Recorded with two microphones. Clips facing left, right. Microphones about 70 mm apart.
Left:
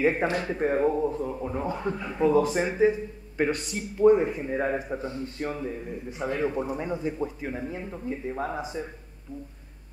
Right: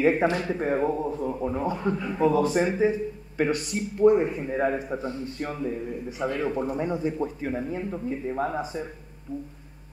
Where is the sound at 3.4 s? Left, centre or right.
Centre.